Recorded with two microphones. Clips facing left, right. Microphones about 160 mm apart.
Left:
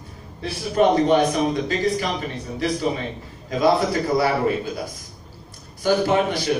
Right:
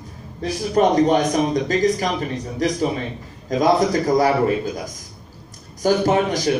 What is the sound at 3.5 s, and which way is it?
Speech, 40° right (ahead or behind).